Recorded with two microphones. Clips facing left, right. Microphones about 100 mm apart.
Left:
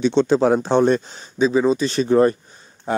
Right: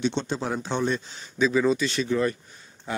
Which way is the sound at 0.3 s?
60° left (ahead or behind).